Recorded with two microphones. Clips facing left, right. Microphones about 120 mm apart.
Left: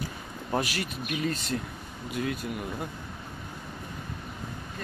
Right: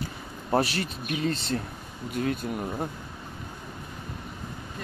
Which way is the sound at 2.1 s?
40° right (ahead or behind).